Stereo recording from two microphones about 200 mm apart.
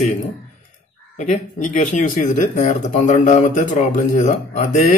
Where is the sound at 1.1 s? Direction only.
35° left (ahead or behind).